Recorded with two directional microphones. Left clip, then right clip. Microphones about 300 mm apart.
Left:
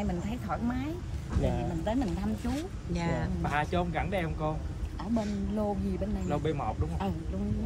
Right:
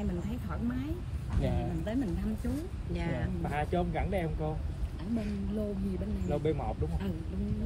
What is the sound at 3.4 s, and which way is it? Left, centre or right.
Speech, left.